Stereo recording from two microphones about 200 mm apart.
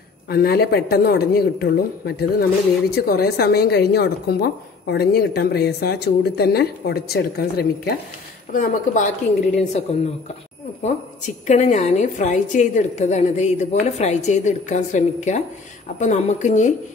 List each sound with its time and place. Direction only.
0.3 s a woman's voice: 50° left (ahead or behind)
8.5 s a woman's voice: 40° left (ahead or behind)
11.4 s a woman's voice: 35° left (ahead or behind)